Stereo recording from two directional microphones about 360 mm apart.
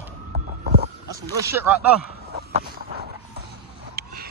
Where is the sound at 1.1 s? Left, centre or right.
Centre.